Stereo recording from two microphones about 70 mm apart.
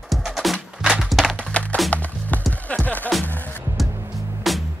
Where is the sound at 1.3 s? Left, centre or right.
Centre.